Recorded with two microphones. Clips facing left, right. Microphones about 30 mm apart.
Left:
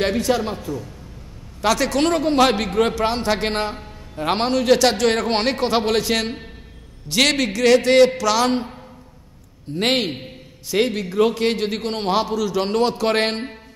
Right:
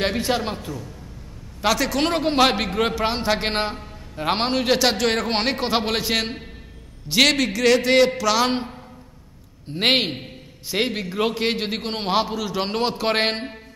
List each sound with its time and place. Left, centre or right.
0.2 s a man's voice: right
1.6 s a man's voice: centre
2.0 s a man's voice: centre
9.7 s a man's voice: right
10.7 s a man's voice: centre